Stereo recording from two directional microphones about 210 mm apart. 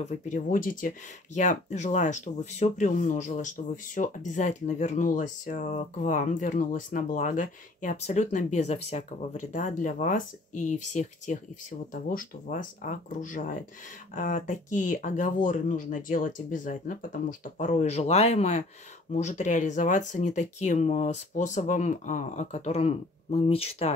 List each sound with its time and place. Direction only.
0.0 s speech: 40° left (ahead or behind)